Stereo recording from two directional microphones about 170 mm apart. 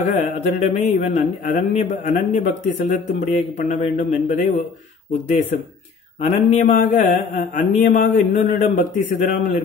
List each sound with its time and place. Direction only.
0.0 s music: 45° left (ahead or behind)
6.2 s music: 45° left (ahead or behind)